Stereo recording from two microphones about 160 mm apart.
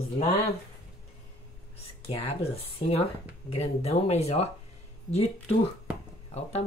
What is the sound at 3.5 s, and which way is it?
Speech, 40° left (ahead or behind).